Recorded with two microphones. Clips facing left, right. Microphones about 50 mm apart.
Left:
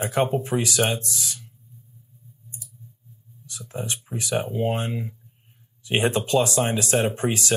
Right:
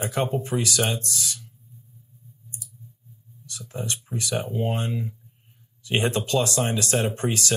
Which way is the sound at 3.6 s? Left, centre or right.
Centre.